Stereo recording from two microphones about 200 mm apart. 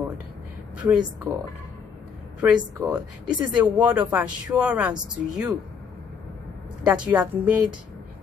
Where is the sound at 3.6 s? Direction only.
5° right (ahead or behind).